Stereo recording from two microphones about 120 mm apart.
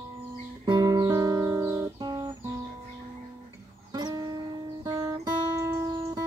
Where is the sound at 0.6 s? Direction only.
35° right (ahead or behind).